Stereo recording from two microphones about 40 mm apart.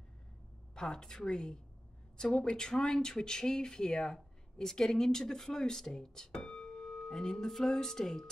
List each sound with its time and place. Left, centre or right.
0.7 s speech: centre